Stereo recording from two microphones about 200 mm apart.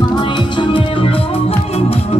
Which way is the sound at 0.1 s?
25° left (ahead or behind).